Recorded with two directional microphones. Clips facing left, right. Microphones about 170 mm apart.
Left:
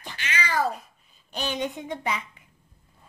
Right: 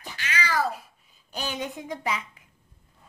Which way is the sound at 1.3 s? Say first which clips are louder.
Left 3 dB; 5° right (ahead or behind).